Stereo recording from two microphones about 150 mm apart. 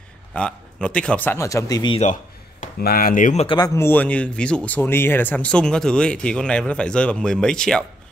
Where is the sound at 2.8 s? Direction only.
80° left.